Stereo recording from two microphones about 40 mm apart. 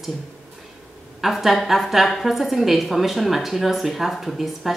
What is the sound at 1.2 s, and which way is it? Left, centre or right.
A woman's voice, centre.